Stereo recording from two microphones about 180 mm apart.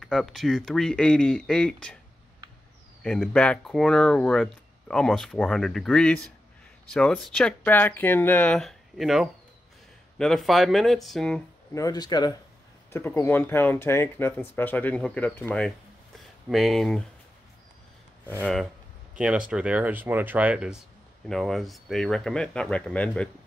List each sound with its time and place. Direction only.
0.0 s speech: centre (ahead or behind)
3.0 s speech: 5° left (ahead or behind)
11.7 s speech: 20° left (ahead or behind); by 17.0 s centre (ahead or behind)
19.1 s speech: 5° right (ahead or behind)